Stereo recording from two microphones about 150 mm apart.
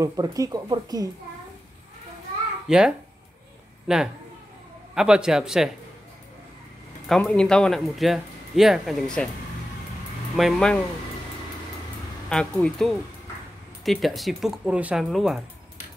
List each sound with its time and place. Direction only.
0.0 s speech: 20° right (ahead or behind)
2.7 s speech: 5° right (ahead or behind)
7.1 s speech: 5° left (ahead or behind)
10.3 s speech: centre (ahead or behind)
12.3 s speech: 5° left (ahead or behind)